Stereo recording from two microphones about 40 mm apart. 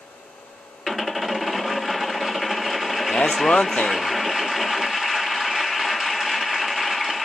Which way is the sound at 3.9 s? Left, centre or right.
Centre.